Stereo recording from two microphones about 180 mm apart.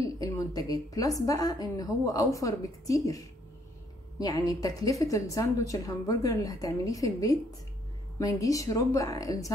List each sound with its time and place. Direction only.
0.0 s a woman's voice: 20° left (ahead or behind)
4.2 s a woman's voice: 20° left (ahead or behind)